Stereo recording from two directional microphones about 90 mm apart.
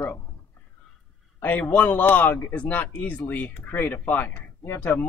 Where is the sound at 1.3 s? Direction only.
20° left (ahead or behind).